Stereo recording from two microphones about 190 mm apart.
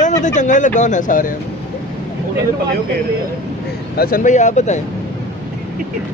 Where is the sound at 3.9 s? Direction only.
50° left (ahead or behind).